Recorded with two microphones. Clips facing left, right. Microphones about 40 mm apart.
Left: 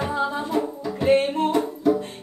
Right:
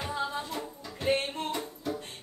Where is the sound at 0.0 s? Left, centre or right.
Centre.